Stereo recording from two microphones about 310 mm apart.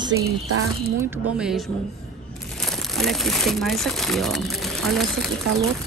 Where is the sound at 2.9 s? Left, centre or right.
Centre.